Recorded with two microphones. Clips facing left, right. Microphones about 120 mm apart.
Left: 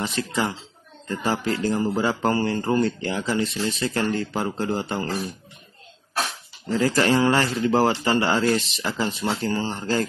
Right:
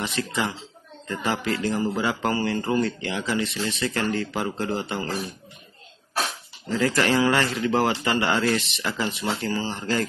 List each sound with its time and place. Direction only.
0.0 s speech: 30° left (ahead or behind)
6.7 s speech: 35° left (ahead or behind)